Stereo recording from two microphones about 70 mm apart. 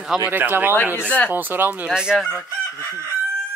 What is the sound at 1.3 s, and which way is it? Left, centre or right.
Speech, right.